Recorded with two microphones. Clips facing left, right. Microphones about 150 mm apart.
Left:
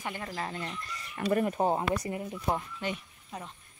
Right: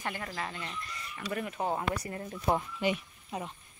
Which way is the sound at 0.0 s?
20° left (ahead or behind).